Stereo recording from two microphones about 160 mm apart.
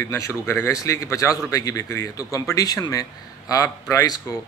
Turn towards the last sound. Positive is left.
turn(degrees=20)  # may be behind; listen again after turning